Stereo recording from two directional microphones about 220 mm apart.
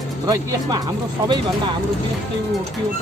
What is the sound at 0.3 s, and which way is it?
Speech, 15° right (ahead or behind).